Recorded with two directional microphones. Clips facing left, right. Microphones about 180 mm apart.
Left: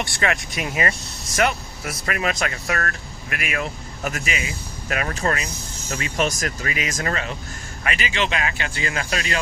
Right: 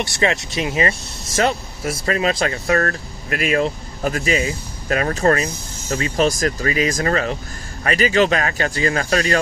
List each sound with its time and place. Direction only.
0.0 s speech: 20° right (ahead or behind); by 9.4 s 40° right (ahead or behind)